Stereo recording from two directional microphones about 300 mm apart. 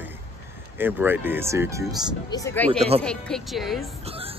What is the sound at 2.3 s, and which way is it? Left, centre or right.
Speech, centre.